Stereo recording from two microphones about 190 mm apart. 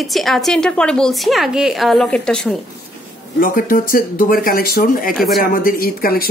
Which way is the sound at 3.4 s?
45° left (ahead or behind).